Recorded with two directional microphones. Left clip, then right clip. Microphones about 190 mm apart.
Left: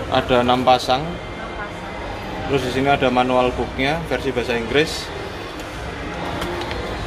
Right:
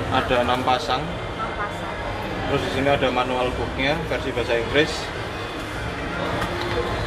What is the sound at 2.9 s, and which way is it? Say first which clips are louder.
Speech: left 4 dB; 50° left (ahead or behind).